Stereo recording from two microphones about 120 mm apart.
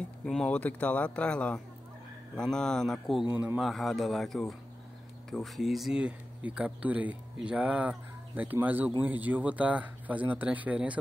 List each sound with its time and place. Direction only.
0.2 s speech: 5° left (ahead or behind)
3.3 s speech: 10° right (ahead or behind)
3.6 s speech: centre (ahead or behind)